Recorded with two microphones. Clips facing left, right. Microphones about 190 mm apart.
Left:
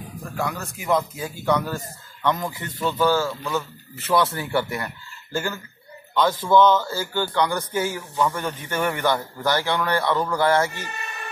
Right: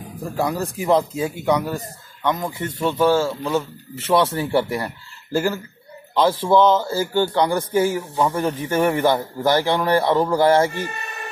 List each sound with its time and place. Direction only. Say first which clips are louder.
0.2 s speech: right 6 dB; 35° right (ahead or behind)
1.4 s speech: even; 15° right (ahead or behind); by 10.9 s 30° right (ahead or behind)